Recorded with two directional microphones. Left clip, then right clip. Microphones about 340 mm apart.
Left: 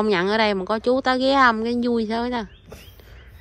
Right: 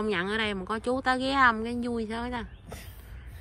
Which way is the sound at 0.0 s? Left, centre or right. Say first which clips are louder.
Left 9 dB; centre.